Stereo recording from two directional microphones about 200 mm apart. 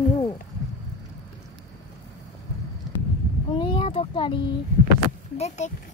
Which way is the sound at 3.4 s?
25° left (ahead or behind).